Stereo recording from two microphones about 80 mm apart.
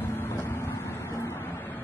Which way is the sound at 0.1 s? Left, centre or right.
Left.